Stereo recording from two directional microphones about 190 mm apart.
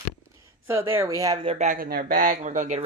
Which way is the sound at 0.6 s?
10° right (ahead or behind).